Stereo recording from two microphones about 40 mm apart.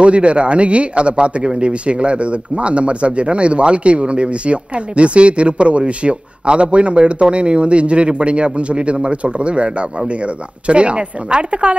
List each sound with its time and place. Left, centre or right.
0.0 s speech: right